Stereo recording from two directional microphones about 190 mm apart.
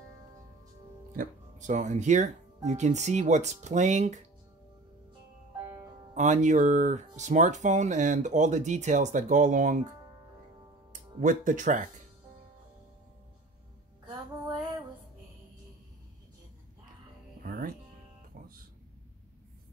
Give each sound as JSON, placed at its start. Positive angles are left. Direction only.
{"t": 1.1, "sound": "speech", "side_deg": -40}
{"t": 6.1, "sound": "speech", "side_deg": -40}
{"t": 11.1, "sound": "speech", "side_deg": -40}
{"t": 17.4, "sound": "music", "side_deg": -50}